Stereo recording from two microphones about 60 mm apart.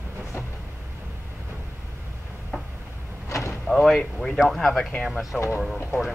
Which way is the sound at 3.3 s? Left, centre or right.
Left.